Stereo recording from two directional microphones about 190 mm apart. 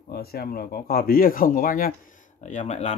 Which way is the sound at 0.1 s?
55° left (ahead or behind).